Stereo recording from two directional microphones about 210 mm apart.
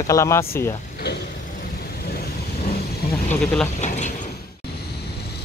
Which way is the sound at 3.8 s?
35° left (ahead or behind).